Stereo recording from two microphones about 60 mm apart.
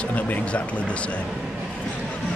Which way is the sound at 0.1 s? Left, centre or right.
Left.